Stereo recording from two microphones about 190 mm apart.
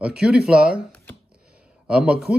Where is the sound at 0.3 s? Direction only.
5° right (ahead or behind).